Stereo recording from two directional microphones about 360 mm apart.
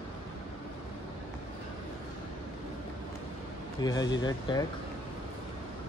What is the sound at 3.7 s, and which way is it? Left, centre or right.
Speech, centre.